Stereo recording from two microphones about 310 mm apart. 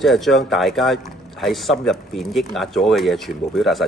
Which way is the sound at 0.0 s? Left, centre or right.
Centre.